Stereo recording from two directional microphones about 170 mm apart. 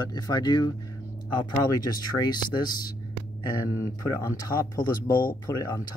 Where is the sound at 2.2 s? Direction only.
25° left (ahead or behind).